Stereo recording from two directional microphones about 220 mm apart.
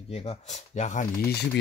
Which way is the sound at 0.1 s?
30° left (ahead or behind).